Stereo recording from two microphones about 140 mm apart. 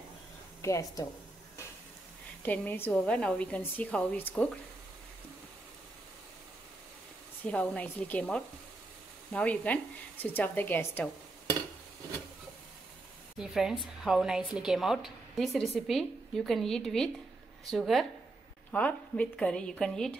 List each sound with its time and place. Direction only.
0.6 s a woman's voice: 20° left (ahead or behind)
2.4 s a woman's voice: 10° left (ahead or behind)
7.4 s a woman's voice: 10° left (ahead or behind)
13.4 s a woman's voice: 5° right (ahead or behind)